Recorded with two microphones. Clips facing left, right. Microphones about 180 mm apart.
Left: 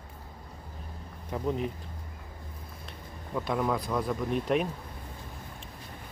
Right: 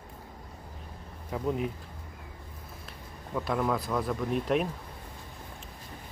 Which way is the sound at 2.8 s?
Centre (ahead or behind).